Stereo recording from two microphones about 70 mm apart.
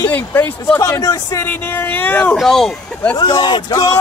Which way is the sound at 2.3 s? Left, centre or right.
Centre.